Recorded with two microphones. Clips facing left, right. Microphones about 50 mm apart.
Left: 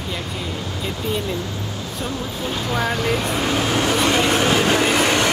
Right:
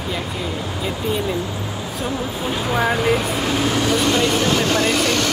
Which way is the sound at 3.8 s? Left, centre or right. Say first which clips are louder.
Even; centre.